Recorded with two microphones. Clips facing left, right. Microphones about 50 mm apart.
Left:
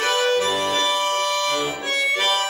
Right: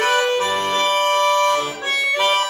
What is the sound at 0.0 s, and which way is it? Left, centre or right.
Accordion, right.